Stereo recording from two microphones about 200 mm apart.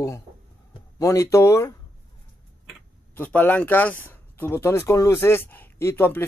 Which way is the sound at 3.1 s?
10° left (ahead or behind).